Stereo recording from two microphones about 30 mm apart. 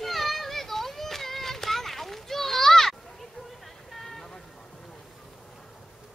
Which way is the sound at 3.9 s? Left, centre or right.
Centre.